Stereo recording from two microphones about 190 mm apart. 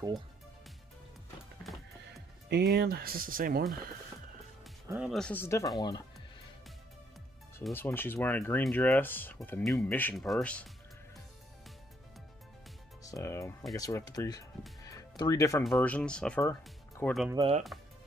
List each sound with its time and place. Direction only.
1.6 s music: centre (ahead or behind)
2.5 s speech: 55° right (ahead or behind)
4.8 s speech: 10° right (ahead or behind)
5.1 s speech: 5° left (ahead or behind)
7.7 s speech: 10° left (ahead or behind)
13.0 s speech: 15° left (ahead or behind)
14.9 s music: 20° left (ahead or behind)
15.6 s speech: 5° left (ahead or behind)